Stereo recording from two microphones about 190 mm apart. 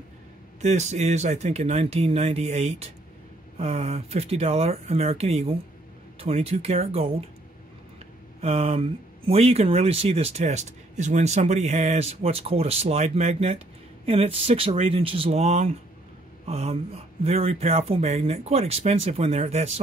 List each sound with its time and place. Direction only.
0.6 s speech: 35° right (ahead or behind)
8.4 s speech: 35° right (ahead or behind)